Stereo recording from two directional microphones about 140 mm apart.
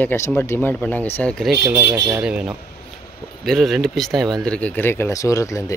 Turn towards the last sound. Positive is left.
turn(degrees=25)  # may be behind; listen again after turning